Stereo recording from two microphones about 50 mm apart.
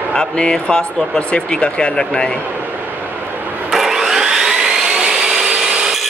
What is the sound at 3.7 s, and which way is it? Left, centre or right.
Vacuum cleaner, centre.